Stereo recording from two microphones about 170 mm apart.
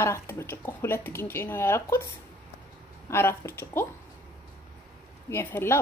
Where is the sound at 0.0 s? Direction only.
15° left (ahead or behind).